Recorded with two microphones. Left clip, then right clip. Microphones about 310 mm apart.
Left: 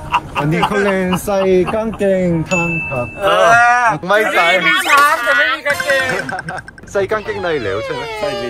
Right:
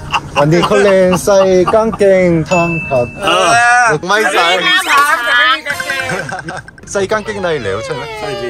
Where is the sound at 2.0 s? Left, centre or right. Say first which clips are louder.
Right 4 dB; right.